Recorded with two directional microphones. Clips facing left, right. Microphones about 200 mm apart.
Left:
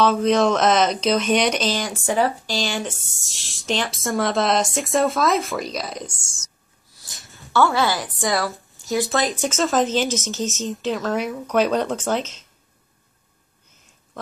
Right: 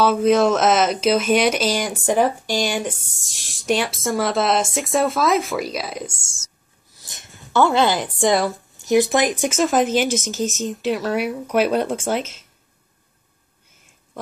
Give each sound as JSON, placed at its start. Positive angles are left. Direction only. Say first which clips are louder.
{"t": 0.0, "sound": "speech", "louder": "right 2 dB", "side_deg": -5}
{"t": 7.2, "sound": "a sound", "louder": "right 1 dB", "side_deg": 0}
{"t": 7.5, "sound": "speech", "louder": "right 2 dB", "side_deg": -20}